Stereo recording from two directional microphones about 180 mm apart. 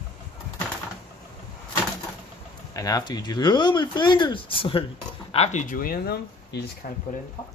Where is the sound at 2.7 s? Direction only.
20° left (ahead or behind); by 6.6 s 55° left (ahead or behind).